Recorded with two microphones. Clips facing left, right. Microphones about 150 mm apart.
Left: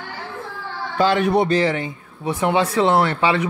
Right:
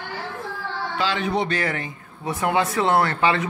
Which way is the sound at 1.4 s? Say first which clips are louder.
Left 7 dB; 30° left (ahead or behind).